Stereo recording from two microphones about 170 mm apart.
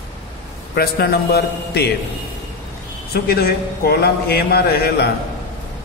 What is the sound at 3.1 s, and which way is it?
A man's voice, 65° left (ahead or behind).